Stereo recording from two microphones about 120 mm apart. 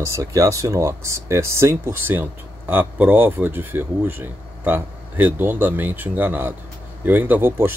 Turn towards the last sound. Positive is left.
turn(degrees=-20)  # may be behind; listen again after turning